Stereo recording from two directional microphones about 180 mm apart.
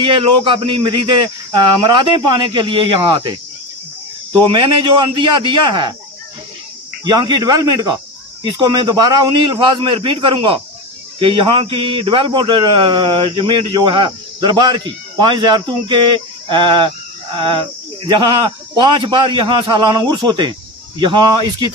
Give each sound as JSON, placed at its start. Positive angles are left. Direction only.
{"t": 0.0, "sound": "a man's voice", "side_deg": -25}
{"t": 4.5, "sound": "a man's voice", "side_deg": -25}
{"t": 7.1, "sound": "a man's voice", "side_deg": -25}